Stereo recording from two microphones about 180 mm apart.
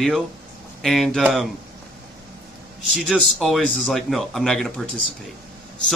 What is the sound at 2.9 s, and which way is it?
Speech, centre (ahead or behind).